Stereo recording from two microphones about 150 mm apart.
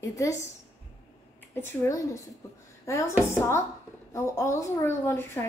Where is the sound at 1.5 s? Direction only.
15° left (ahead or behind).